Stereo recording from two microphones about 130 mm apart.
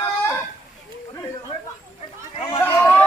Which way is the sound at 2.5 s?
20° left (ahead or behind).